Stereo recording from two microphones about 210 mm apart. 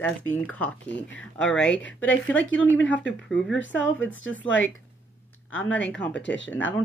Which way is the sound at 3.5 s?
65° left (ahead or behind).